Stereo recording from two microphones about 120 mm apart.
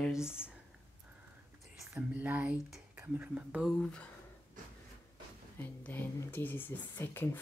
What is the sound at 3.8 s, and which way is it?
Speech, 10° left (ahead or behind).